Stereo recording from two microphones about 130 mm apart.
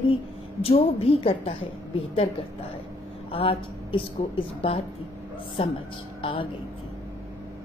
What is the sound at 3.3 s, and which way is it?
A woman's voice, 45° left (ahead or behind).